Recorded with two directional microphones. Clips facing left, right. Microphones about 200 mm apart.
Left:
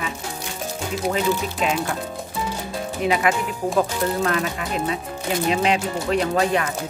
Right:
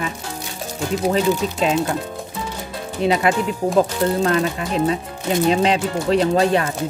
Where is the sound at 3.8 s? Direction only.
25° right (ahead or behind).